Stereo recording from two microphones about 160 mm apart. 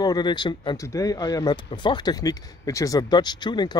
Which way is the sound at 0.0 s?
25° left (ahead or behind).